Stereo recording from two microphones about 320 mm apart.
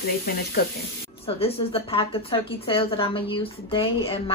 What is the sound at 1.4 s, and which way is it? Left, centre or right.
A woman's voice, centre.